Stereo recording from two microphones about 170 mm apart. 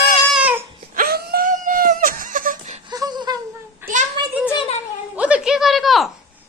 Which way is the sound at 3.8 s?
10° right (ahead or behind).